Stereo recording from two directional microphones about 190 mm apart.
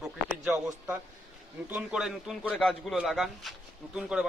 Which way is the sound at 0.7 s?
10° right (ahead or behind).